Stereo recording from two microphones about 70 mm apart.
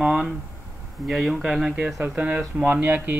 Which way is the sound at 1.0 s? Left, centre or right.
Centre.